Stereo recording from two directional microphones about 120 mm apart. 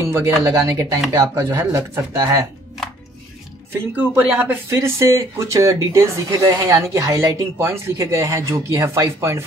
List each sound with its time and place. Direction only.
0.1 s speech: 25° right (ahead or behind)
3.7 s speech: 15° right (ahead or behind)